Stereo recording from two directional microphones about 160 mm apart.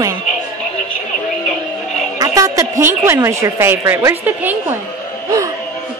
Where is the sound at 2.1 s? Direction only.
20° right (ahead or behind).